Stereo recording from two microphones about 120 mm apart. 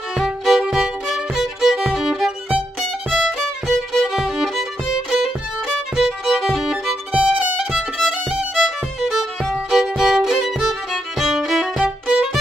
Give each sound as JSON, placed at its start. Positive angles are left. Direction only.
{"t": 0.2, "sound": "music", "side_deg": -5}
{"t": 5.9, "sound": "violin", "side_deg": -5}